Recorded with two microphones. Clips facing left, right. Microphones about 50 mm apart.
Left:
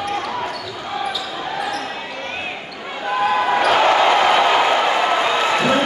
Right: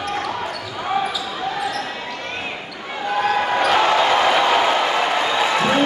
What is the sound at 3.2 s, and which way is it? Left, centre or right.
Basketball bounce, centre.